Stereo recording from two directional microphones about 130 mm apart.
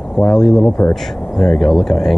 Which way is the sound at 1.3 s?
5° left (ahead or behind).